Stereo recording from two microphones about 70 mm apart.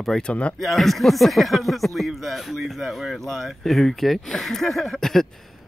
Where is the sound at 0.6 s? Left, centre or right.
Centre.